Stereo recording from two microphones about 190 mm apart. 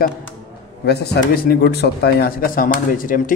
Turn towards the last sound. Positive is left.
turn(degrees=45)  # may be behind; listen again after turning